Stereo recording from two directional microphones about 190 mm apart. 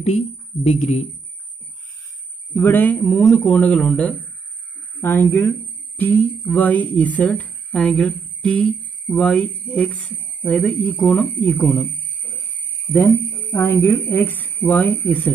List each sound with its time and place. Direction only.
0.7 s speech: 35° left (ahead or behind)
2.5 s a woman's voice: 10° left (ahead or behind)
13.0 s speech: 10° left (ahead or behind)